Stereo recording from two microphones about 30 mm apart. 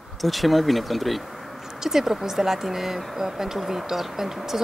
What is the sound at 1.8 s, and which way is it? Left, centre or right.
Speech, centre.